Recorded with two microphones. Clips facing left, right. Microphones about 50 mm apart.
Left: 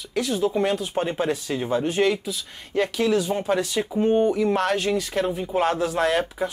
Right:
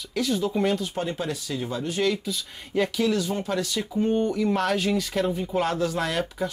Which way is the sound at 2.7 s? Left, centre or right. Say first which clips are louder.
Left 2 dB; centre.